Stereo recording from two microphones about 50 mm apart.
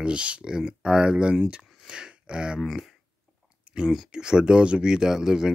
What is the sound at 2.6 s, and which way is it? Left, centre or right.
Speech, centre.